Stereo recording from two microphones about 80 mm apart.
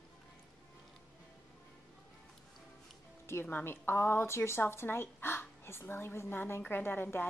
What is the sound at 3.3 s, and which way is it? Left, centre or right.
A woman's voice, left.